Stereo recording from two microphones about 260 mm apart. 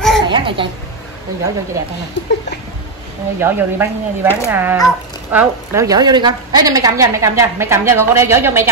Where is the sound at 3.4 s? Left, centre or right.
Centre.